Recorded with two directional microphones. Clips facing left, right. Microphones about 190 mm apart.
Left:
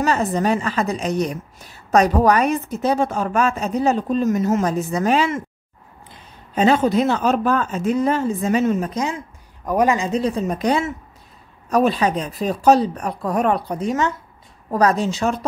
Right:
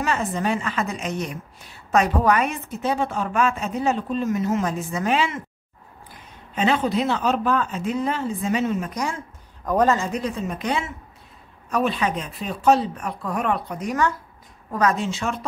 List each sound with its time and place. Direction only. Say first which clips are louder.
0.0 s a woman's voice: left 5 dB; 40° left (ahead or behind)
6.5 s speech: left 5 dB; 40° left (ahead or behind)
8.9 s a woman's voice: left 4 dB; 20° left (ahead or behind)
10.1 s a woman's voice: left 6 dB; 35° left (ahead or behind)
14.7 s a woman's voice: left 4 dB; 35° left (ahead or behind)